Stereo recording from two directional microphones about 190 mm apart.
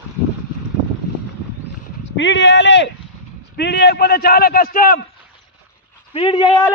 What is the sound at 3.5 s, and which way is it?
A man's voice, 60° left (ahead or behind).